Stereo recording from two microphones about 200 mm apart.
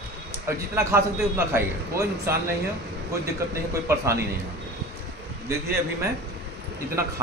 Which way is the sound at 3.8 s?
15° right (ahead or behind).